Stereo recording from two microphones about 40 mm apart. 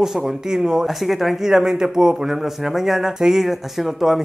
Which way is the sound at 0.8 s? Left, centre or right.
Centre.